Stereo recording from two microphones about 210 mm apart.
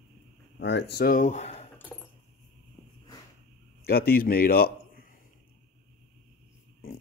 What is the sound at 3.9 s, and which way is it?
A man's voice, 45° left (ahead or behind).